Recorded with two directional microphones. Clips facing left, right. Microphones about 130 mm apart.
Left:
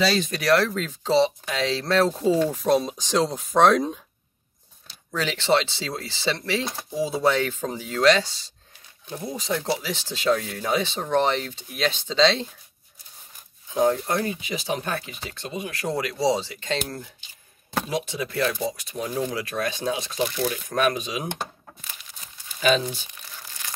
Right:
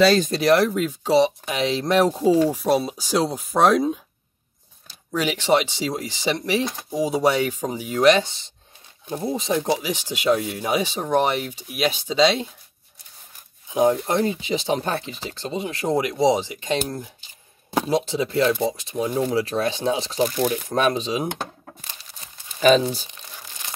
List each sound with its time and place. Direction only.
0.0 s speech: 50° right (ahead or behind)
0.3 s speech: 20° right (ahead or behind); by 4.0 s 5° right (ahead or behind)
5.1 s speech: 15° right (ahead or behind)
13.7 s speech: 20° right (ahead or behind)
17.8 s speech: 30° right (ahead or behind)
20.2 s speech: 40° right (ahead or behind)
20.6 s speech: 25° right (ahead or behind)
21.8 s crumpling: 35° right (ahead or behind)
23.1 s crumpling: 20° right (ahead or behind)